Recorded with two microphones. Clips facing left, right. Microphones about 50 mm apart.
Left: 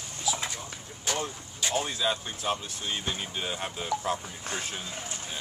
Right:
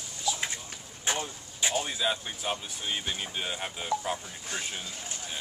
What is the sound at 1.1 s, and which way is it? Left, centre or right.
Vehicle, right.